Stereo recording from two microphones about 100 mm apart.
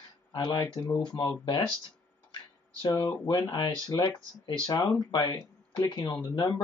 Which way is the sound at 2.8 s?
45° left (ahead or behind).